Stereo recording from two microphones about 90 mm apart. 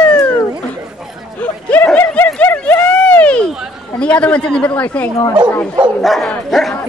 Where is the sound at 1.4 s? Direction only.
15° left (ahead or behind).